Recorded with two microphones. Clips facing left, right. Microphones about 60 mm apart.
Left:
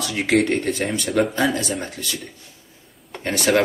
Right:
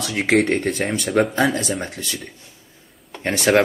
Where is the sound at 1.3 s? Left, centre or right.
Right.